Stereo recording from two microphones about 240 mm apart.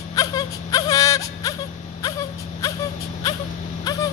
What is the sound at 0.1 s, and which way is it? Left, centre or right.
Whimper, centre.